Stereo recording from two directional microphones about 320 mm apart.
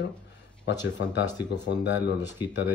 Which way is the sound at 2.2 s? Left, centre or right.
Centre.